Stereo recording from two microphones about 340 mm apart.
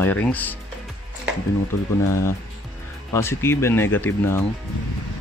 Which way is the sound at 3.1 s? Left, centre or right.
Centre.